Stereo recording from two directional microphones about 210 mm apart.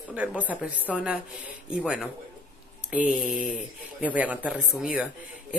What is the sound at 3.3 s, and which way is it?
Speech, 40° left (ahead or behind).